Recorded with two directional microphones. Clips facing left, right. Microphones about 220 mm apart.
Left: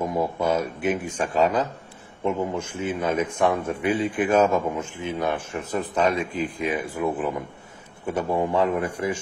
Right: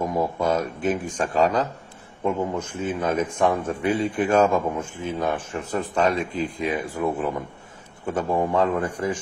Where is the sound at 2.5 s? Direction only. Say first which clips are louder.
Right 1 dB; 10° left (ahead or behind).